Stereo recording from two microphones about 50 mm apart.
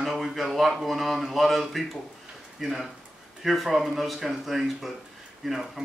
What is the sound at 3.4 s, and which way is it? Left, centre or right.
A man's voice, centre.